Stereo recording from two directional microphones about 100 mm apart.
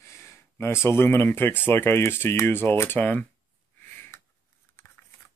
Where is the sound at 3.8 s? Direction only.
20° left (ahead or behind).